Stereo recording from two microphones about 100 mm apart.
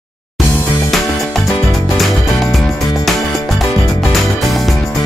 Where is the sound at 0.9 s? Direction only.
Centre (ahead or behind).